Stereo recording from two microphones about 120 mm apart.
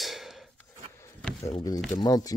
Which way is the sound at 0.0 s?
Centre (ahead or behind).